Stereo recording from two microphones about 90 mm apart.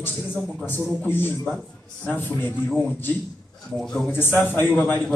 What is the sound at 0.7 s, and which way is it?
Speech, 25° left (ahead or behind).